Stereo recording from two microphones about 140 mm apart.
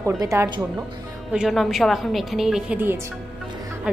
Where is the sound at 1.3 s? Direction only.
Centre (ahead or behind).